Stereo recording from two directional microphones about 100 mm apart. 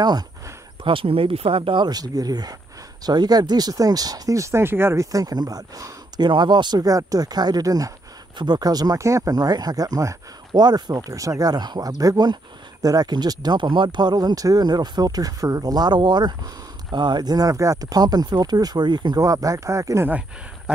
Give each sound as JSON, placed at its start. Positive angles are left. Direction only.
{"t": 0.8, "sound": "speech", "side_deg": -65}
{"t": 1.9, "sound": "speech", "side_deg": -40}
{"t": 5.1, "sound": "speech", "side_deg": -40}
{"t": 6.2, "sound": "speech", "side_deg": -50}
{"t": 20.1, "sound": "speech", "side_deg": -15}